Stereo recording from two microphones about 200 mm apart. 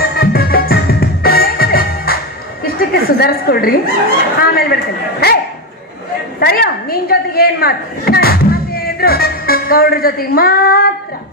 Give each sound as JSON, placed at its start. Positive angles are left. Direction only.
{"t": 0.0, "sound": "music", "side_deg": 50}
{"t": 2.6, "sound": "a woman's voice", "side_deg": 50}
{"t": 5.2, "sound": "bow-wow", "side_deg": 50}
{"t": 6.4, "sound": "a woman's voice", "side_deg": 50}